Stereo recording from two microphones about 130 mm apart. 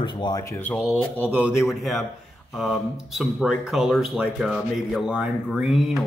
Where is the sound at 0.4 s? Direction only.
25° left (ahead or behind).